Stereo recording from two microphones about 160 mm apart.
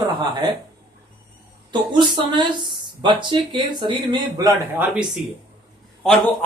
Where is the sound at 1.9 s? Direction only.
25° right (ahead or behind).